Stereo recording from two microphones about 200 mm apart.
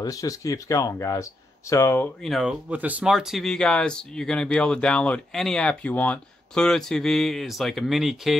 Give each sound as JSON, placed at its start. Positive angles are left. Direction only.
{"t": 0.0, "sound": "speech", "side_deg": 15}